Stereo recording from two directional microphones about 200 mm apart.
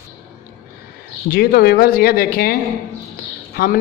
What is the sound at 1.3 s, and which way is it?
Speech, 50° left (ahead or behind).